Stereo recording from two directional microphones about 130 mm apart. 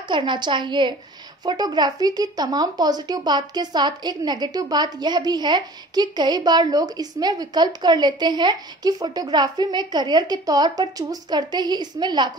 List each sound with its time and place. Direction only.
0.1 s speech: 40° right (ahead or behind)